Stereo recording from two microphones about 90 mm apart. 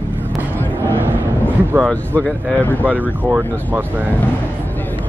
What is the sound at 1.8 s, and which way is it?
Speech, 10° left (ahead or behind).